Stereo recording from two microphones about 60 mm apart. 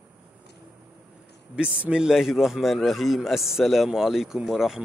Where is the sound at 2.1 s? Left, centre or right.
Centre.